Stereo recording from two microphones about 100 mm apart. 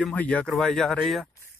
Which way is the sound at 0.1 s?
15° left (ahead or behind).